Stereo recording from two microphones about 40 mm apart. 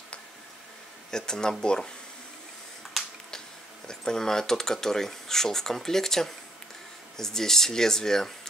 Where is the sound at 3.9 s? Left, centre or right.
Centre.